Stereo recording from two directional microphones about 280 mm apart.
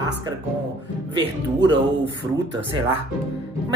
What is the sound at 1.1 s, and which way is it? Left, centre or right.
Speech, centre.